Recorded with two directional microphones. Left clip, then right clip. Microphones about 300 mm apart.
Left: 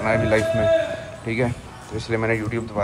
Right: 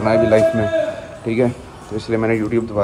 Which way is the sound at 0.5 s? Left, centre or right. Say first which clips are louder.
Right 1 dB; centre.